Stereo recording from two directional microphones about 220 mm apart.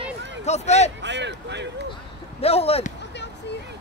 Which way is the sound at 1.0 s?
50° right (ahead or behind).